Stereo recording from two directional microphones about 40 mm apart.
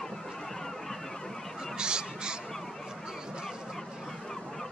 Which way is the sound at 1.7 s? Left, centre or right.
Right.